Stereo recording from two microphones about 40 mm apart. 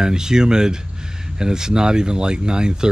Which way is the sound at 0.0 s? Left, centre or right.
Centre.